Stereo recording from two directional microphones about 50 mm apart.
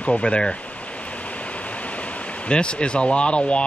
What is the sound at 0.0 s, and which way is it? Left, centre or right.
Speech, left.